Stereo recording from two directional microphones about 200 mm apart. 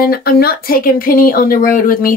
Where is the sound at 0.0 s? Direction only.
50° left (ahead or behind).